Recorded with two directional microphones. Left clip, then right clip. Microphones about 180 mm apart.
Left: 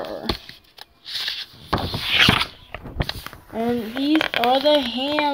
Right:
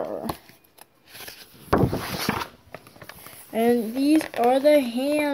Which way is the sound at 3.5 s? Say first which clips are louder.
Right 3 dB; 20° right (ahead or behind).